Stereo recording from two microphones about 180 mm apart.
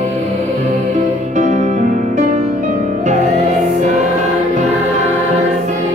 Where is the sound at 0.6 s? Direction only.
40° right (ahead or behind).